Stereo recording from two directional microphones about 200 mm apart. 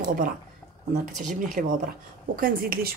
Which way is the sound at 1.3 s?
40° right (ahead or behind).